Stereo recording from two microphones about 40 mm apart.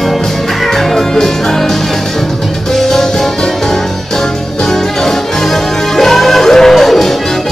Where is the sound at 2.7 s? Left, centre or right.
Centre.